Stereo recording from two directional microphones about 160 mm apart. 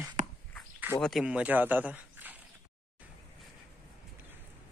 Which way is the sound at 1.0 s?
Centre (ahead or behind).